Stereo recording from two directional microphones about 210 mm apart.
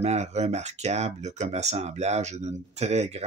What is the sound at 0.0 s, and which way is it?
Speech, 30° right (ahead or behind).